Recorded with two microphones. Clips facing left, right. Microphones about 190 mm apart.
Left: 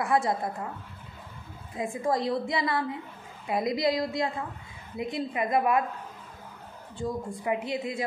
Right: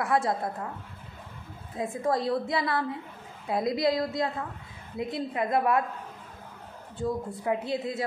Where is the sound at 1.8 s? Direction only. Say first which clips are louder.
Even; centre (ahead or behind).